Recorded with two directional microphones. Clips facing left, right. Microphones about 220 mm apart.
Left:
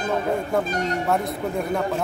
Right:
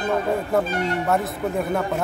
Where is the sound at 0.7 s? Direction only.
40° left (ahead or behind).